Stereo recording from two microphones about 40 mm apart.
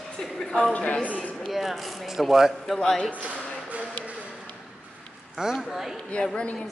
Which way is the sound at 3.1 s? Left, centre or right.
Right.